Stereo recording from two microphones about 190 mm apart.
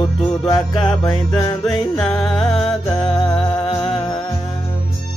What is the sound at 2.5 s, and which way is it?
Music, 30° left (ahead or behind).